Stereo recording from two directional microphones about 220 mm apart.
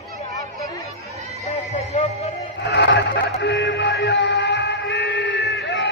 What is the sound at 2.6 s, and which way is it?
Music, 50° left (ahead or behind).